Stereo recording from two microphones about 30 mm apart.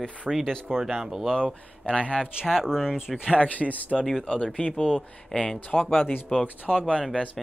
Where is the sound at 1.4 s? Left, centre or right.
Left.